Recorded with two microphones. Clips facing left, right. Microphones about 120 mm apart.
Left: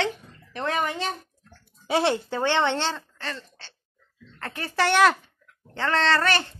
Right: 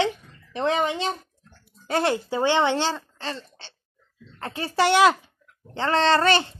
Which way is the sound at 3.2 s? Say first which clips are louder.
Right 2 dB; 25° right (ahead or behind).